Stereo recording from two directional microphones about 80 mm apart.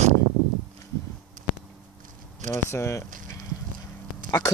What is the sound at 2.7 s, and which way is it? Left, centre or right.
Speech, left.